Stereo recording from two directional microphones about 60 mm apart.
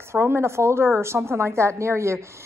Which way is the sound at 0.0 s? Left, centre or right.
Right.